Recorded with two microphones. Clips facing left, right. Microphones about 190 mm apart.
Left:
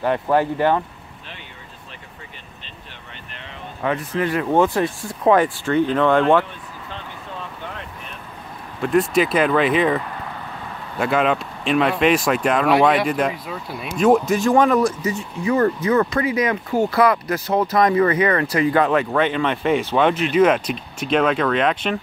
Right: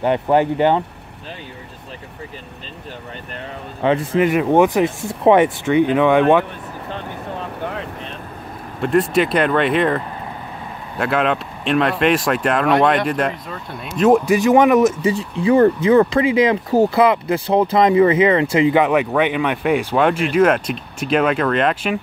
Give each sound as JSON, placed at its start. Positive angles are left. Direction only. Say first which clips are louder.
{"t": 0.0, "sound": "speech", "louder": "right 3 dB", "side_deg": -20}
{"t": 3.8, "sound": "speech", "louder": "right 6 dB", "side_deg": -25}
{"t": 8.8, "sound": "speech", "louder": "right 1 dB", "side_deg": 0}